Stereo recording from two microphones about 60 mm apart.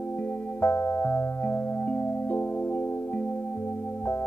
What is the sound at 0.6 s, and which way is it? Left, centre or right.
Music, left.